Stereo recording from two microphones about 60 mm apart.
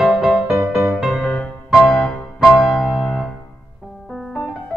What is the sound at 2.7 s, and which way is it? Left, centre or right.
Keyboard, centre.